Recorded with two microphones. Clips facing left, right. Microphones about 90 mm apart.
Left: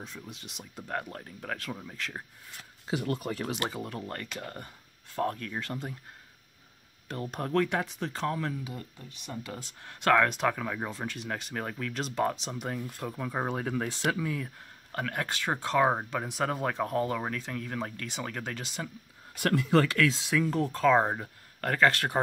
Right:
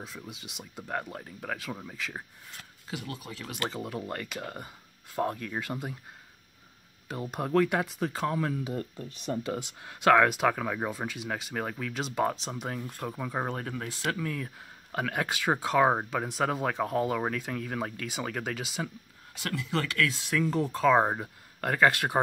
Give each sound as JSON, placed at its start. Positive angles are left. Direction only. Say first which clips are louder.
{"t": 0.0, "sound": "speech", "louder": "right 1 dB", "side_deg": -5}
{"t": 2.9, "sound": "speech", "louder": "left 8 dB", "side_deg": 40}
{"t": 3.8, "sound": "speech", "louder": "right 2 dB", "side_deg": -5}
{"t": 7.1, "sound": "speech", "louder": "right 2 dB", "side_deg": -10}
{"t": 13.7, "sound": "speech", "louder": "left 5 dB", "side_deg": 25}
{"t": 14.0, "sound": "speech", "louder": "right 1 dB", "side_deg": 5}
{"t": 14.9, "sound": "speech", "louder": "right 2 dB", "side_deg": -10}
{"t": 19.3, "sound": "speech", "louder": "left 7 dB", "side_deg": 50}
{"t": 19.8, "sound": "speech", "louder": "left 4 dB", "side_deg": 30}
{"t": 20.3, "sound": "speech", "louder": "right 3 dB", "side_deg": 0}